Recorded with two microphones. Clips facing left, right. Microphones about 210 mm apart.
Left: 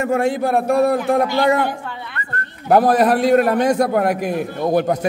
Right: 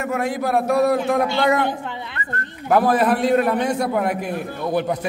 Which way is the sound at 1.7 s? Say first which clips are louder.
Right 1 dB; 20° right (ahead or behind).